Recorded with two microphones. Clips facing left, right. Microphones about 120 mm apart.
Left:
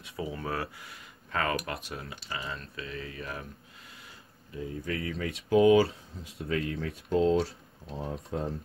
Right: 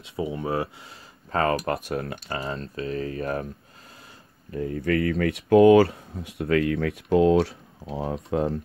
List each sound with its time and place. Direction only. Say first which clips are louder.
0.0 s speech: right 7 dB; 25° right (ahead or behind)
1.3 s speech: right 7 dB; 35° right (ahead or behind)
4.5 s speech: right 9 dB; 60° right (ahead or behind)